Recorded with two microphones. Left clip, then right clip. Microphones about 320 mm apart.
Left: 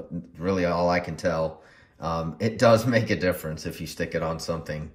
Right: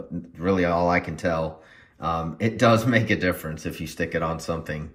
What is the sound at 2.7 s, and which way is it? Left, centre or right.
Speech, left.